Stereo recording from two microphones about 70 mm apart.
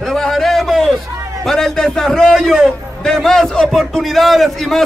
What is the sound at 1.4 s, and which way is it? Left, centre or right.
A man's voice, centre.